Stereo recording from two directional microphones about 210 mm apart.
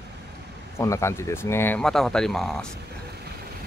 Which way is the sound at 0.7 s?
15° left (ahead or behind).